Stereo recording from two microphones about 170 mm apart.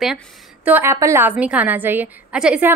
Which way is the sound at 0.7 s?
10° right (ahead or behind).